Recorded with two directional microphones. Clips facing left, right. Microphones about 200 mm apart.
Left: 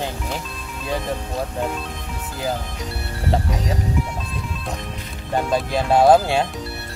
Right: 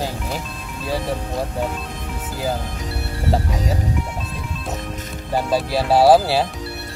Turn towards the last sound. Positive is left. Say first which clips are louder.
# right 1 dB
turn(degrees=-5)  # may be behind; listen again after turning